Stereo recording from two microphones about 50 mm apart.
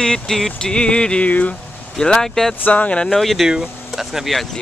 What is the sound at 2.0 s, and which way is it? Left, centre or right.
Speech, centre.